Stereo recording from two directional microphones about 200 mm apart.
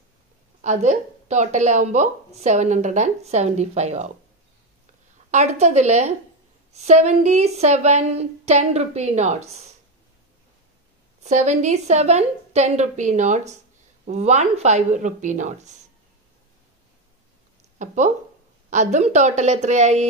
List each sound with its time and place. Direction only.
0.6 s a woman's voice: 35° right (ahead or behind)
5.3 s a woman's voice: 35° right (ahead or behind)
11.2 s a woman's voice: 35° right (ahead or behind)
17.7 s a woman's voice: 35° right (ahead or behind)